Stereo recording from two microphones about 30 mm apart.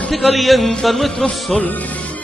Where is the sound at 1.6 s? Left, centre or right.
Left.